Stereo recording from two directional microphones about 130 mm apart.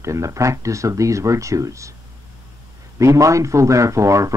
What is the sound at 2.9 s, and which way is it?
Speech, 25° right (ahead or behind).